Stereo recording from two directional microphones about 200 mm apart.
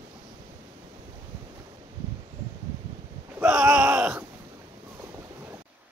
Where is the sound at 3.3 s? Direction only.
5° right (ahead or behind).